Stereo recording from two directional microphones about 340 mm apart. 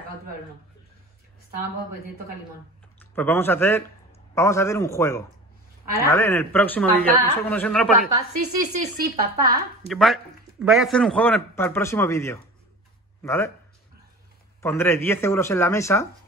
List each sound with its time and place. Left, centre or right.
3.0 s a man's voice: centre
8.7 s speech: right
9.8 s a man's voice: centre
14.6 s speech: centre